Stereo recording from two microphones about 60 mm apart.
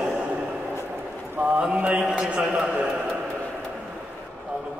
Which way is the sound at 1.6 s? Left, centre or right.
Centre.